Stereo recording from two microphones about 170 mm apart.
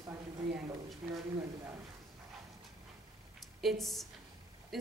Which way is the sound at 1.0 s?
10° right (ahead or behind).